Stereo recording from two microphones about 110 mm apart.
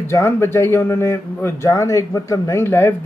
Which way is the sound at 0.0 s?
25° left (ahead or behind).